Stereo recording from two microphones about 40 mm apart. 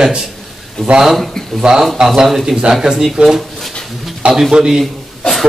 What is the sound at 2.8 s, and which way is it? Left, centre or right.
Speech, centre.